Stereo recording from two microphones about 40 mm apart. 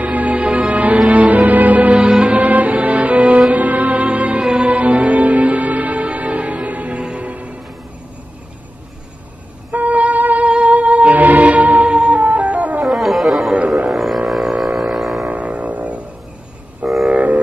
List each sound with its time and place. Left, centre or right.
0.0 s music: right
2.0 s music: right
2.2 s music: right
9.7 s music: right
12.8 s music: centre
13.7 s didgeridoo: centre
14.8 s a sound: centre
15.2 s music: right
16.8 s a sound: centre
17.1 s a sound: right